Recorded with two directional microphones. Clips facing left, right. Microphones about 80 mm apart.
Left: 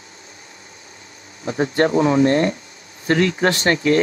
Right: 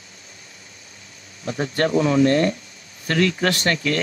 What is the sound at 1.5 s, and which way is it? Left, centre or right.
Speech, left.